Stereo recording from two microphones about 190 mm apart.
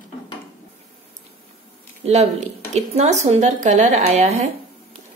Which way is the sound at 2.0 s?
35° right (ahead or behind).